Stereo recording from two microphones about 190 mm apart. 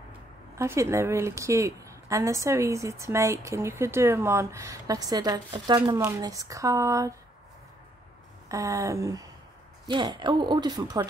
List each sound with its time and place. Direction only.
0.6 s a woman's voice: 15° right (ahead or behind)
8.5 s a woman's voice: 15° right (ahead or behind)